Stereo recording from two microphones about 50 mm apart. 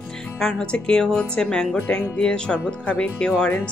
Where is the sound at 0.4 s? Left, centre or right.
Centre.